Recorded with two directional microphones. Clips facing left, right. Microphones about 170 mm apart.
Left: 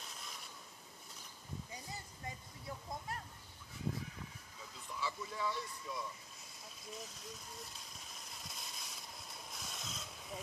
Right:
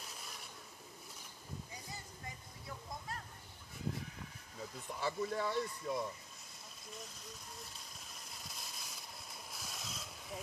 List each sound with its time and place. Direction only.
4.7 s speech: 50° right (ahead or behind)
8.0 s a sound: centre (ahead or behind)
9.5 s vehicle: 5° right (ahead or behind)